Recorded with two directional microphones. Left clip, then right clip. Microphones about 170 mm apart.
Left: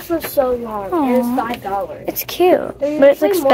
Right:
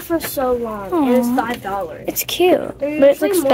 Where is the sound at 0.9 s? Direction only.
10° right (ahead or behind).